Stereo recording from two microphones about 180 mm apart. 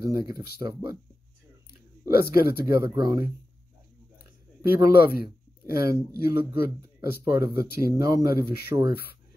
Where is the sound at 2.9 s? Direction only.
20° right (ahead or behind).